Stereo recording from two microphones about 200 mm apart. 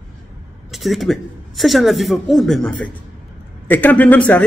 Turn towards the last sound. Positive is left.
turn(degrees=10)  # may be behind; listen again after turning